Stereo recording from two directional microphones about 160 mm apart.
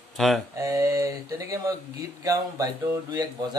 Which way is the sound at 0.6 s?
20° right (ahead or behind).